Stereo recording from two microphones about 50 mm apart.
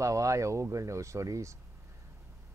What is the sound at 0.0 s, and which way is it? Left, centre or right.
Speech, right.